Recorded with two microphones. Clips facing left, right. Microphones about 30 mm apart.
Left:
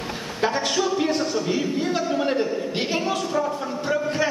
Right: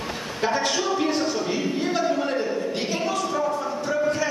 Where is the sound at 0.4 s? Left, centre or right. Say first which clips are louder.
Left 1 dB; centre.